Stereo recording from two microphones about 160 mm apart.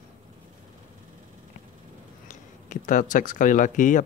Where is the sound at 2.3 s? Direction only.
55° left (ahead or behind).